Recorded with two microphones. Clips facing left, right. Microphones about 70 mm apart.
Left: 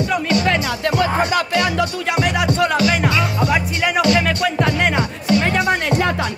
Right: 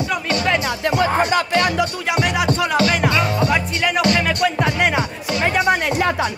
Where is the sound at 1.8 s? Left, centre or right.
Centre.